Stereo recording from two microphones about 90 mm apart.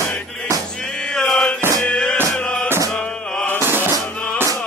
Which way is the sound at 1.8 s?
10° left (ahead or behind).